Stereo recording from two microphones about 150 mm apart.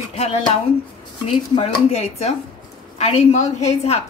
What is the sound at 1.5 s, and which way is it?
A woman's voice, 45° left (ahead or behind).